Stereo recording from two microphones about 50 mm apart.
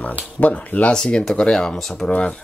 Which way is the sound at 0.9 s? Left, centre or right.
Centre.